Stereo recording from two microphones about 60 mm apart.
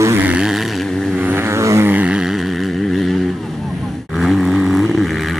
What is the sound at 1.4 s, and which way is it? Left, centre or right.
Vehicle, right.